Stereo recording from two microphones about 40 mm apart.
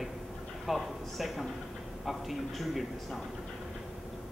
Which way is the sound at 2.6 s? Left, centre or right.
Centre.